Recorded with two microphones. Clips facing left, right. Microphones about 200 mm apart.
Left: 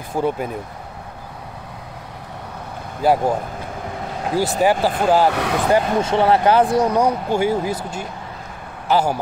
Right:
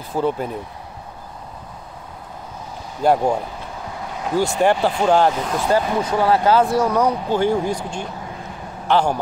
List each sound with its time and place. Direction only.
0.1 s speech: 10° left (ahead or behind)
3.0 s speech: 5° left (ahead or behind)
4.3 s speech: 40° left (ahead or behind)
5.0 s speech: 5° left (ahead or behind)
5.3 s speech: 70° left (ahead or behind)
5.7 s speech: 20° left (ahead or behind)